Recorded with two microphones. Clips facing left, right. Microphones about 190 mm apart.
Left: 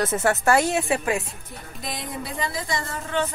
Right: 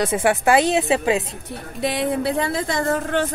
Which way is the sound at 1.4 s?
70° right (ahead or behind).